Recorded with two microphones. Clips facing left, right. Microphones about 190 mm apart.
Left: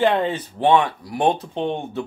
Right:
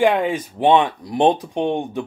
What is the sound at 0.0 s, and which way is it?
Speech, 10° right (ahead or behind).